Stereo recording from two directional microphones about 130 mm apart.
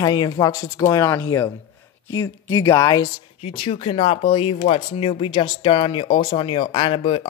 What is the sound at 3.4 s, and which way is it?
Speech, 45° left (ahead or behind).